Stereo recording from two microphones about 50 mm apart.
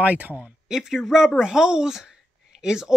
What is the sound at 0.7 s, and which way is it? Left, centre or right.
Speech, centre.